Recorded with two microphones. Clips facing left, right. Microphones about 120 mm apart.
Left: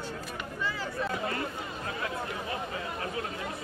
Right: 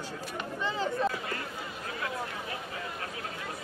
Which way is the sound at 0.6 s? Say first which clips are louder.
Right 4 dB; 20° right (ahead or behind).